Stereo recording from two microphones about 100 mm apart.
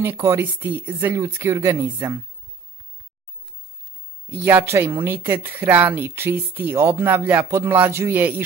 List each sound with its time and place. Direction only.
0.2 s speech: 25° right (ahead or behind)
1.1 s speech: 30° right (ahead or behind)
4.3 s speech: 20° right (ahead or behind)